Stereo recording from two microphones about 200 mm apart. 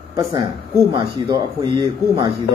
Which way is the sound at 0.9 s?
25° right (ahead or behind).